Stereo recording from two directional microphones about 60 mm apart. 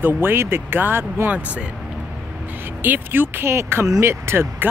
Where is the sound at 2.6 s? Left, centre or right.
Right.